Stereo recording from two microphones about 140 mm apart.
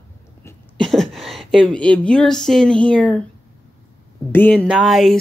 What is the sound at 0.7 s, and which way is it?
Speech, centre (ahead or behind).